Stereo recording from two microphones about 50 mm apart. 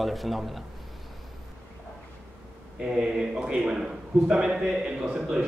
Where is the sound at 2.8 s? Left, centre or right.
Centre.